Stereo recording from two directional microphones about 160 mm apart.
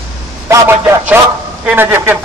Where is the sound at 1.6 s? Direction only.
15° right (ahead or behind).